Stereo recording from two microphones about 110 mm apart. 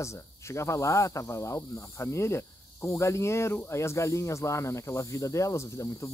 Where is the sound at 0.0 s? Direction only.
25° left (ahead or behind).